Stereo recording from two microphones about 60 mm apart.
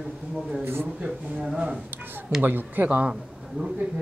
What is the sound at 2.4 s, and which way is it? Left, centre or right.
Speech, right.